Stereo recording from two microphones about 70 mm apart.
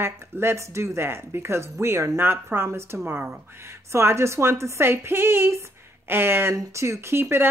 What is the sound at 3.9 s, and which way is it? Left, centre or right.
A woman's voice, right.